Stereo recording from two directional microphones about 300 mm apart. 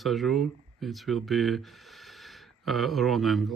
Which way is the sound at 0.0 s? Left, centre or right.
Centre.